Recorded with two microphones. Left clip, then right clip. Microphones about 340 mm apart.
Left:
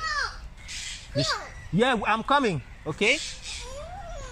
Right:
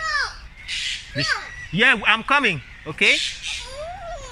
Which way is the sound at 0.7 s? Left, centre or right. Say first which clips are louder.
Right 10 dB; centre.